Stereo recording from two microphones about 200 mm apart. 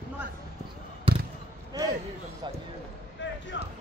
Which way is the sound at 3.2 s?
65° left (ahead or behind).